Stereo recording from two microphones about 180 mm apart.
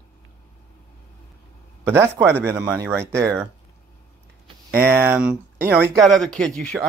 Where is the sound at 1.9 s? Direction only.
10° right (ahead or behind).